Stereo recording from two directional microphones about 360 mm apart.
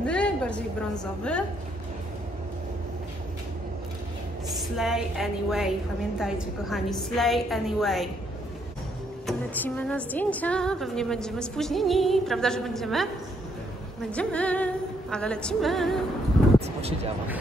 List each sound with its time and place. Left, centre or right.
0.0 s a woman's voice: centre
4.6 s a woman's voice: centre
9.2 s a woman's voice: centre
14.1 s a woman's voice: centre
16.5 s vehicle: centre